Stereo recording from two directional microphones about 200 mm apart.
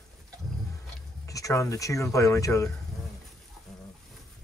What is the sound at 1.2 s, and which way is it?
Speech, 15° left (ahead or behind).